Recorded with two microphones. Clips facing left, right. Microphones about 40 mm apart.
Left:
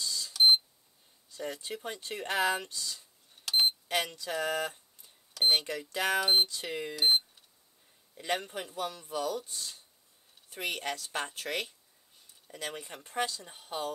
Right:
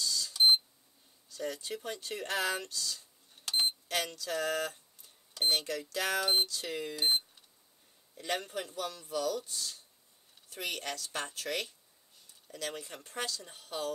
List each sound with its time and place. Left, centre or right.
0.0 s cash register: centre
1.3 s speech: centre
3.5 s cash register: centre
5.4 s speech: centre
7.0 s speech: centre